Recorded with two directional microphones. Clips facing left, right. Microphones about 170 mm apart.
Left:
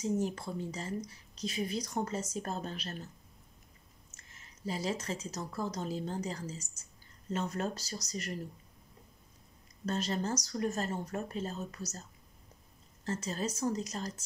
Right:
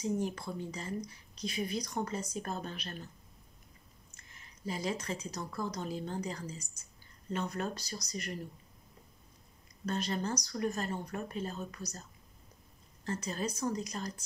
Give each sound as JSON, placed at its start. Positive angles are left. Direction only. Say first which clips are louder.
{"t": 0.2, "sound": "speech", "louder": "left 1 dB", "side_deg": 40}
{"t": 4.1, "sound": "a sound", "louder": "even", "side_deg": 40}
{"t": 4.6, "sound": "speech", "louder": "left 1 dB", "side_deg": 40}
{"t": 9.8, "sound": "speech", "louder": "left 1 dB", "side_deg": 40}